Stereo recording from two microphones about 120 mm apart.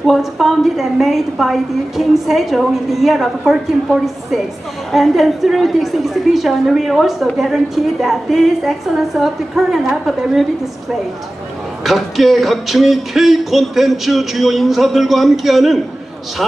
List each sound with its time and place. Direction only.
0.0 s a woman's voice: centre (ahead or behind)
11.8 s a woman's voice: centre (ahead or behind)